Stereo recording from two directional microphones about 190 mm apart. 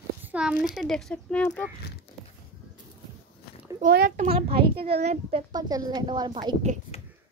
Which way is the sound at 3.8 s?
50° right (ahead or behind).